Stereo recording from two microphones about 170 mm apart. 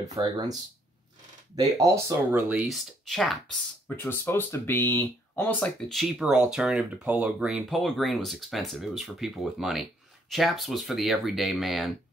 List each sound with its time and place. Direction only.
0.0 s speech: 25° right (ahead or behind)
1.6 s speech: 20° right (ahead or behind)
2.3 s speech: 5° right (ahead or behind)
3.9 s speech: 10° left (ahead or behind)